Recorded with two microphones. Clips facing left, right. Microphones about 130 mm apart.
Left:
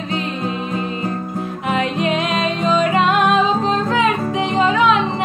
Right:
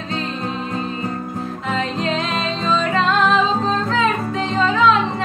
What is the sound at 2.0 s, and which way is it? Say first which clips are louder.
Music: left 3 dB; 15° left (ahead or behind).